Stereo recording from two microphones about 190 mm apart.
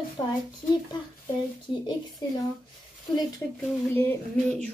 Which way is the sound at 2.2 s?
20° left (ahead or behind).